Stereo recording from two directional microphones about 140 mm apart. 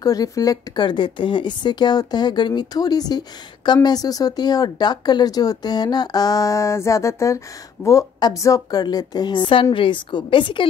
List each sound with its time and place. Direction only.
0.0 s speech: 25° left (ahead or behind)